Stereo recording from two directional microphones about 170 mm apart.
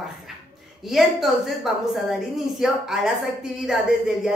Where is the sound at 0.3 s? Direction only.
Centre (ahead or behind).